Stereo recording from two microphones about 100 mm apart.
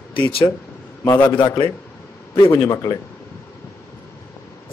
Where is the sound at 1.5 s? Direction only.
50° left (ahead or behind).